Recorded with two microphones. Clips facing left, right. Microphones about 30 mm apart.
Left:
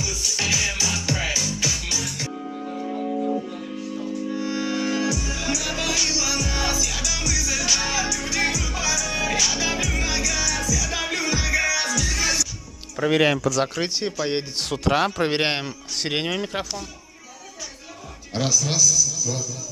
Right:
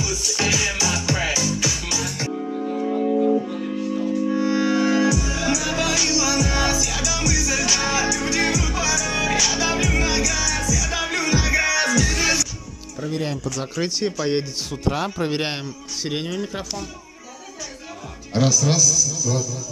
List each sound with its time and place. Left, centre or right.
0.0 s music: centre
2.0 s music: centre
13.7 s speech: left
14.0 s speech: centre
14.9 s speech: left
18.3 s a man's voice: centre